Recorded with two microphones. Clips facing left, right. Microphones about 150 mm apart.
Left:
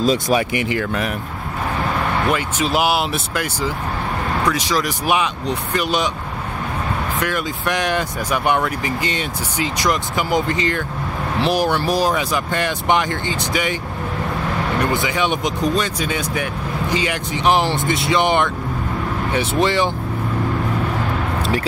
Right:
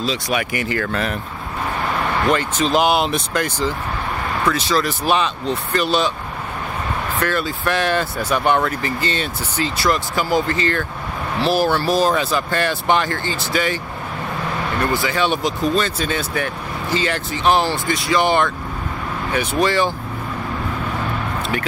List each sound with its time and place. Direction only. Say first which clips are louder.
0.0 s speech: left 5 dB; 45° left (ahead or behind)
0.4 s speech: left 2 dB; 20° left (ahead or behind)
2.2 s speech: right 2 dB; 10° left (ahead or behind)
7.2 s speech: right 1 dB; 15° left (ahead or behind)
14.9 s speech: even; 15° left (ahead or behind)